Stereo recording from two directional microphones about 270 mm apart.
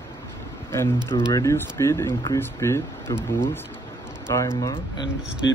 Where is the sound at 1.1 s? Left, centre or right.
Centre.